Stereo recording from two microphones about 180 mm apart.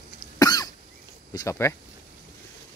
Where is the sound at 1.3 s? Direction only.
15° left (ahead or behind).